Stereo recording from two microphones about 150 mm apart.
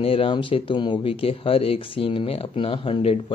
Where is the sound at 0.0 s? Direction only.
40° left (ahead or behind).